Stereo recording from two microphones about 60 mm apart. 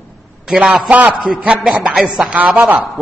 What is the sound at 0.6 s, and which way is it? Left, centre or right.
A man's voice, right.